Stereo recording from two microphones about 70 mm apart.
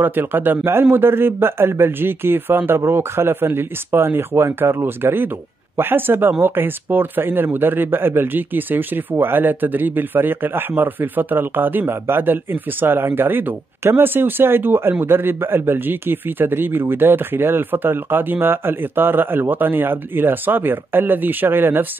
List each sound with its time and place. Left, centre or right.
0.0 s a man's voice: right